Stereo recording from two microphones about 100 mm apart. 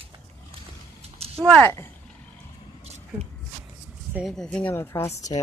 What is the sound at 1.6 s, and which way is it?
Speech, 20° left (ahead or behind).